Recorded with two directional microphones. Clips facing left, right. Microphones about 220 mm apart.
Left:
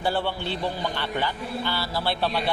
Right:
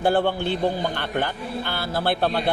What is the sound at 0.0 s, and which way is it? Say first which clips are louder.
A man's voice: right 6 dB; 50° right (ahead or behind).